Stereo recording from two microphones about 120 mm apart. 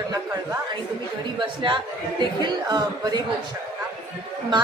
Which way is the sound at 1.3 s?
45° right (ahead or behind).